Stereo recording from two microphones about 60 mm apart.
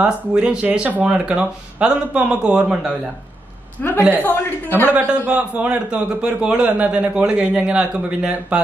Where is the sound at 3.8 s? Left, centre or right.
Left.